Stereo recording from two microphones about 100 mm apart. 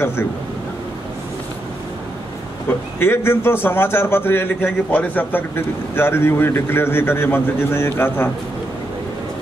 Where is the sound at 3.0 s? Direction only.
25° left (ahead or behind).